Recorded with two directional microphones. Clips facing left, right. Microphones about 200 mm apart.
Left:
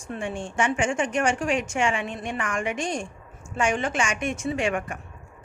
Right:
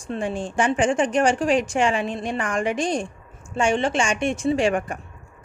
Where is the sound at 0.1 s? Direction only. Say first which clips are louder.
Right 5 dB; 35° right (ahead or behind).